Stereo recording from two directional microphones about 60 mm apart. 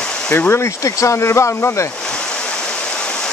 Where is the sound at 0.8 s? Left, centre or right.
Left.